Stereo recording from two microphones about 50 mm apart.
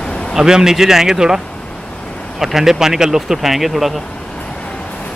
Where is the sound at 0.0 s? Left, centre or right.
Centre.